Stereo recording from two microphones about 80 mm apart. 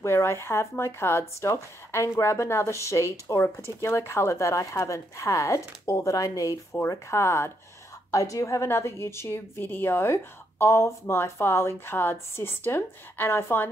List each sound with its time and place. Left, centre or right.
0.0 s speech: left